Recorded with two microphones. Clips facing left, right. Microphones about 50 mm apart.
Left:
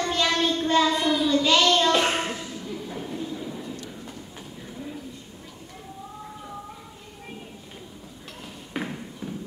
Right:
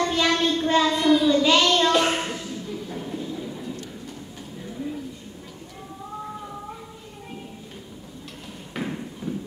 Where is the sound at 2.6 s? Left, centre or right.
Centre.